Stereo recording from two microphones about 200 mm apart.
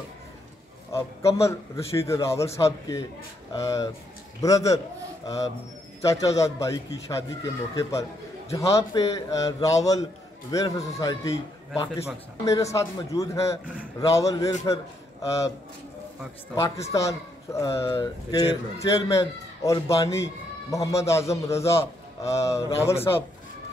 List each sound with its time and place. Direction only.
0.9 s speech: 15° left (ahead or behind)
12.4 s speech: 15° left (ahead or behind)
16.5 s speech: 15° left (ahead or behind)